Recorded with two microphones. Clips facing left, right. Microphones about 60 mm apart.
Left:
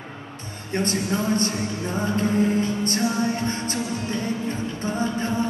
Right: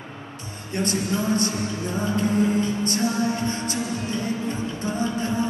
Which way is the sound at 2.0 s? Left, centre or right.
Left.